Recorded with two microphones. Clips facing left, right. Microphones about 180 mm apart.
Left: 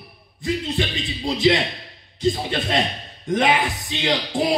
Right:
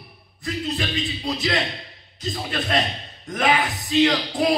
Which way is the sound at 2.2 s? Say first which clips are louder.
Left 6 dB; 25° left (ahead or behind).